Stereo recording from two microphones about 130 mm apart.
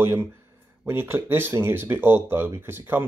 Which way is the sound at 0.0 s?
15° right (ahead or behind).